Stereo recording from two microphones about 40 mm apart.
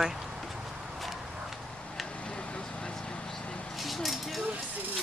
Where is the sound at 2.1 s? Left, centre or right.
Left.